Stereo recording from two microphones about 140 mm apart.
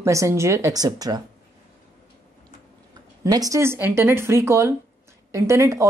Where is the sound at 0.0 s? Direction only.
20° right (ahead or behind).